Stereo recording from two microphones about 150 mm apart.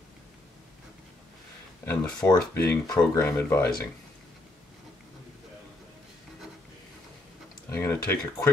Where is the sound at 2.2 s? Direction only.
15° left (ahead or behind).